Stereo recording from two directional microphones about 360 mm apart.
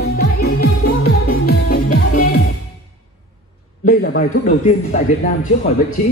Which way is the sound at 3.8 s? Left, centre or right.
Left.